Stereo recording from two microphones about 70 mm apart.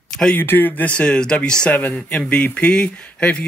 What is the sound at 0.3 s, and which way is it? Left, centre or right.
Speech, left.